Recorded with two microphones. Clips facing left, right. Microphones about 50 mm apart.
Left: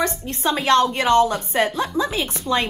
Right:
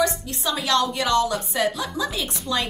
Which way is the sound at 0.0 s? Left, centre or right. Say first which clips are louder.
Left 2 dB; left.